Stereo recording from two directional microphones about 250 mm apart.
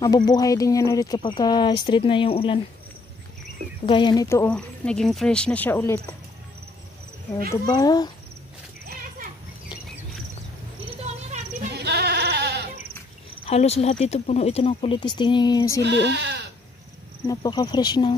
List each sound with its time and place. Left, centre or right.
0.0 s speech: centre
3.8 s speech: centre
7.6 s speech: centre
11.7 s sheep: right
13.5 s speech: left
15.8 s speech: right
17.3 s speech: centre